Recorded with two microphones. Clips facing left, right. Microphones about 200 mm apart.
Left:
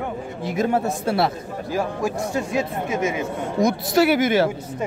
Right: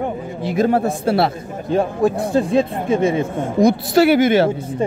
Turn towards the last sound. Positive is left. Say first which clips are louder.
# right 5 dB
turn(degrees=-30)  # may be behind; listen again after turning